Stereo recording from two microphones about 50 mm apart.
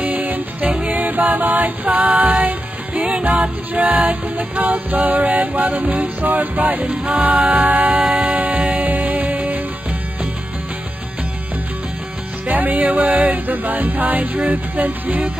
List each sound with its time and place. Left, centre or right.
0.0 s music: right
7.2 s music: centre
7.6 s music: right
12.5 s music: right